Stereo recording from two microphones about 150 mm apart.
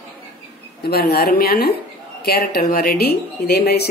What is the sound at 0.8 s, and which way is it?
Speech, 90° left.